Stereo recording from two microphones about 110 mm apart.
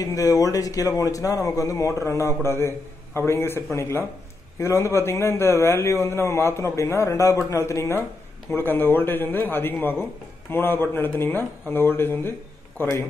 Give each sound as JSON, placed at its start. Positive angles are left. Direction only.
{"t": 0.0, "sound": "a man's voice", "side_deg": 30}